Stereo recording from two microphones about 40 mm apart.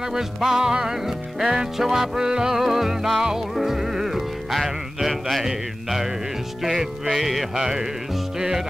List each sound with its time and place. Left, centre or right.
0.1 s music: centre
6.6 s music: centre